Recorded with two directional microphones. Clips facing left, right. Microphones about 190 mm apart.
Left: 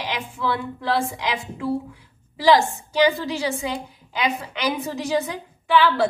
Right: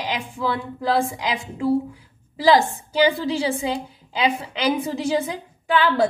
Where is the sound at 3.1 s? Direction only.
30° right (ahead or behind).